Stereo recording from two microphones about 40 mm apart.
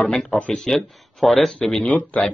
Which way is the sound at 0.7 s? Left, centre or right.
Centre.